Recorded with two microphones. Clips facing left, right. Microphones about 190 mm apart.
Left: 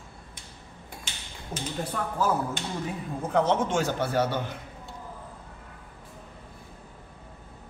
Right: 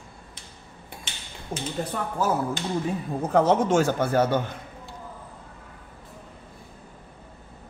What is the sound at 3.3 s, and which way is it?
Speech, 45° right (ahead or behind).